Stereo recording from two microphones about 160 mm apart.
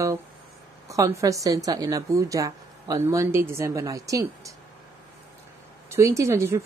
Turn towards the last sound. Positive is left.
turn(degrees=-20)  # may be behind; listen again after turning